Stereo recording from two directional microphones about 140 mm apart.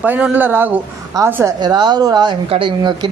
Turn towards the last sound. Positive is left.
turn(degrees=-35)  # may be behind; listen again after turning